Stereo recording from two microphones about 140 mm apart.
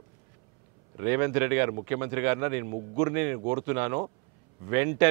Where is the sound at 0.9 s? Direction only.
20° right (ahead or behind).